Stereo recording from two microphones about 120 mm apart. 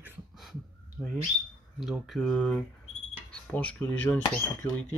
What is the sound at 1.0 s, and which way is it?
Speech, 5° left (ahead or behind).